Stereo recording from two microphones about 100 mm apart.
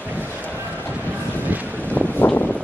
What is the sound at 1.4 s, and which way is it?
Vehicle, 15° right (ahead or behind).